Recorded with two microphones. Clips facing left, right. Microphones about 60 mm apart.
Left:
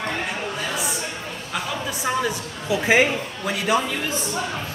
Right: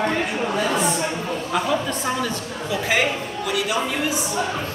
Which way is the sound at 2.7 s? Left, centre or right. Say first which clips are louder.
Left 4 dB; left.